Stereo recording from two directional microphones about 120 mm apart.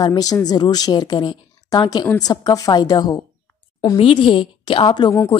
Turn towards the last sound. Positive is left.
turn(degrees=40)  # may be behind; listen again after turning